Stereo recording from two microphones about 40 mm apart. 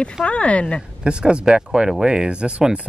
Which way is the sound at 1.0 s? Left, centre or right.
Right.